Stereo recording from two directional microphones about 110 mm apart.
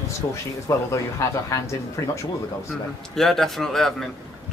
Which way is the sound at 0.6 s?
30° left (ahead or behind).